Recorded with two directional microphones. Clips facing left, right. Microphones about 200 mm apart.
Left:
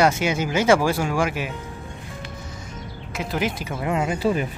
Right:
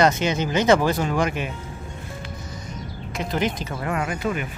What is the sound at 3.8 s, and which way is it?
Speech, 20° left (ahead or behind).